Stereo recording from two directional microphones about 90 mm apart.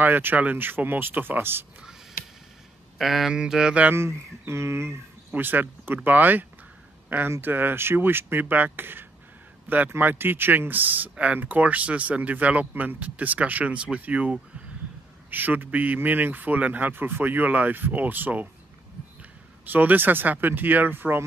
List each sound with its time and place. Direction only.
0.0 s a man's voice: 20° right (ahead or behind)
3.0 s speech: centre (ahead or behind)
3.9 s a man's voice: 30° right (ahead or behind)
19.6 s a man's voice: 20° right (ahead or behind)